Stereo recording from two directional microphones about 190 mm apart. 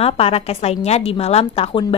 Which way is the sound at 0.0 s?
30° left (ahead or behind).